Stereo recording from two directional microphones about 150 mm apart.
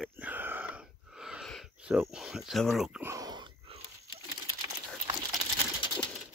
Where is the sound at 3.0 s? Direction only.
25° right (ahead or behind).